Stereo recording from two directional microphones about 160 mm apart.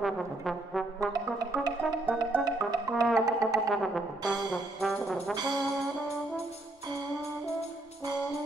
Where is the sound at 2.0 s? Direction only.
10° right (ahead or behind).